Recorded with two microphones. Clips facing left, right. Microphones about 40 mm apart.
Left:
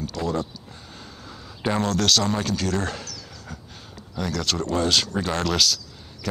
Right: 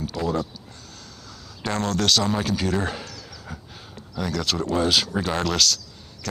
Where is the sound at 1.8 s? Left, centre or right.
Centre.